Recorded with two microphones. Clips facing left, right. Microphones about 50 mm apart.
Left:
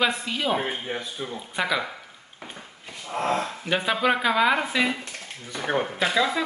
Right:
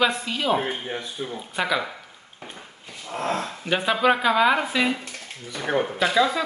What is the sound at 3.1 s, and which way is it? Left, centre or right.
Speech, left.